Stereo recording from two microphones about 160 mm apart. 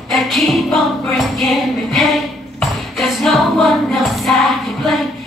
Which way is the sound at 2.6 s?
Centre (ahead or behind).